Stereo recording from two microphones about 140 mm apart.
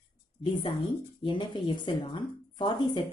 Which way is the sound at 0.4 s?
40° left (ahead or behind).